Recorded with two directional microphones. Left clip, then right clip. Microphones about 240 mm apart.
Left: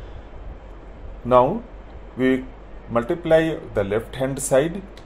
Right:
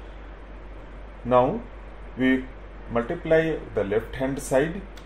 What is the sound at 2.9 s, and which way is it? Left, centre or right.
Speech, centre.